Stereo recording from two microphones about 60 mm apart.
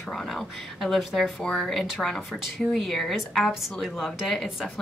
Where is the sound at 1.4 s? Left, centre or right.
Centre.